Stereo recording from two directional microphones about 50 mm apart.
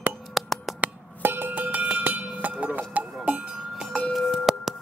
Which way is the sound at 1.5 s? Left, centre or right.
Right.